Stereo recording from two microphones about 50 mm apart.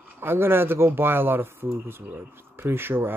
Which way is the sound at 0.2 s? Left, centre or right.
Right.